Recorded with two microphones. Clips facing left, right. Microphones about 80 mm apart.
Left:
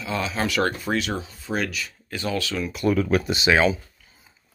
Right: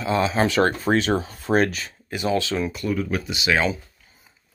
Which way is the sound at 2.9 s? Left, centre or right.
Left.